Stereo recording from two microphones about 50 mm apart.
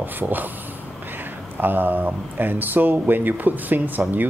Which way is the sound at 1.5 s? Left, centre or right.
Right.